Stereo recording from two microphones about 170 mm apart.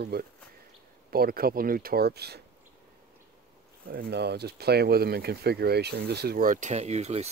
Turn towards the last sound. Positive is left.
turn(degrees=-40)  # may be behind; listen again after turning